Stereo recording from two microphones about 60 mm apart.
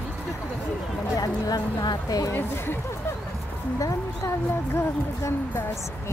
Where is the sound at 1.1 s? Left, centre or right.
Left.